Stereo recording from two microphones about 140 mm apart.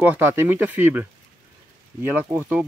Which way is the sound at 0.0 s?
15° right (ahead or behind).